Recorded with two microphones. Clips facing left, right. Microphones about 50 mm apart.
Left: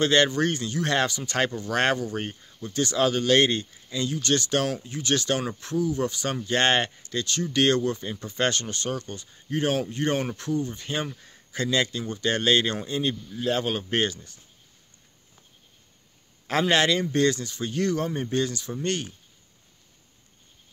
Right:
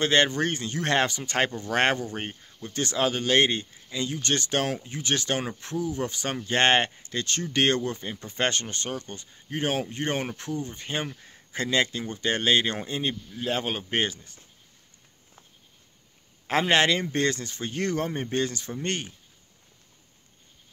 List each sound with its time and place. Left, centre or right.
0.0 s speech: right
16.4 s speech: right